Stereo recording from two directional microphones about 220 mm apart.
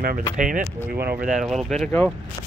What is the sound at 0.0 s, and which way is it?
Speech, 40° right (ahead or behind).